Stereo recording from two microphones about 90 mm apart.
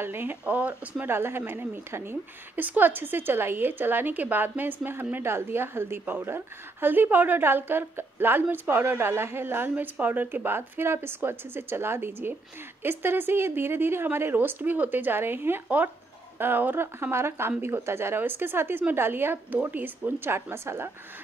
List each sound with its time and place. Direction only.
0.0 s a woman's voice: 25° right (ahead or behind)